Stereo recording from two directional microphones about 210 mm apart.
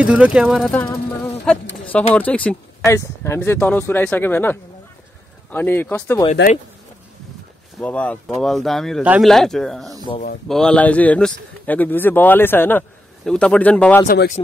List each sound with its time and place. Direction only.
0.0 s speech: 5° right (ahead or behind)
1.9 s speech: 5° left (ahead or behind)
7.8 s speech: 5° left (ahead or behind)
10.1 s speech: 30° left (ahead or behind)
10.5 s speech: 5° left (ahead or behind)
14.0 s speech: 50° left (ahead or behind)